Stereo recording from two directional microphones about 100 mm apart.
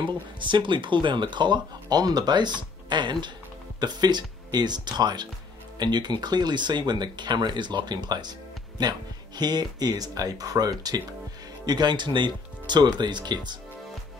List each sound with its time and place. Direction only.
0.0 s speech: 50° right (ahead or behind)